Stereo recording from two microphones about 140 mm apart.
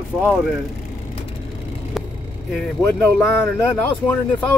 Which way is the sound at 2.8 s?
15° left (ahead or behind).